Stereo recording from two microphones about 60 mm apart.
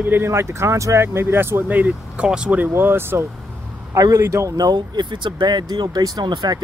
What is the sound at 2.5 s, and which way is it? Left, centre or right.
Speech, right.